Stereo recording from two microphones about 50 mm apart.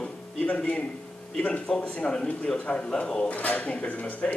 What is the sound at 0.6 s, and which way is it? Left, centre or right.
A man's voice, left.